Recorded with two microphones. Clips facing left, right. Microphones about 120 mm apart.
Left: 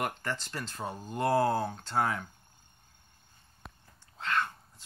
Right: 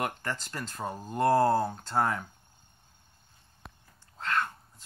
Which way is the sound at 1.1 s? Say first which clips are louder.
Right 3 dB; 40° right (ahead or behind).